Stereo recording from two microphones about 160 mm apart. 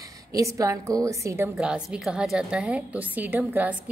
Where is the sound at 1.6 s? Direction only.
5° right (ahead or behind).